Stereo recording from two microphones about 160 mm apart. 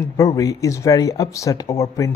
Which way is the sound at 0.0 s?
20° left (ahead or behind).